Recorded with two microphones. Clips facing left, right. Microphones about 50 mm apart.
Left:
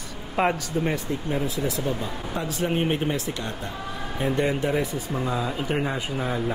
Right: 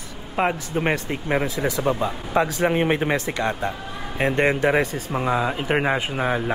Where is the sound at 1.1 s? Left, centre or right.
Right.